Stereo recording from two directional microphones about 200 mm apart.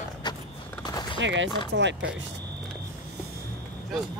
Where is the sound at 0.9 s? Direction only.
20° left (ahead or behind).